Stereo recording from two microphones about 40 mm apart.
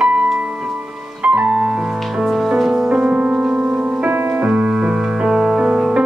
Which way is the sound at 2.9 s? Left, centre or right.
Right.